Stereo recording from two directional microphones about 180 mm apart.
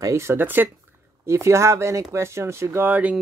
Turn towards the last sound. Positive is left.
turn(degrees=-10)  # may be behind; listen again after turning